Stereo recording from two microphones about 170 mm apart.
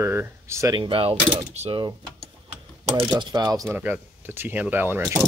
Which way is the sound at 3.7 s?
10° right (ahead or behind).